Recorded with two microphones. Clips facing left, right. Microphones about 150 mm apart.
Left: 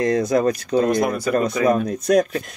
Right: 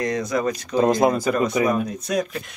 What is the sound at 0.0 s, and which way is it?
Speech, 30° left (ahead or behind).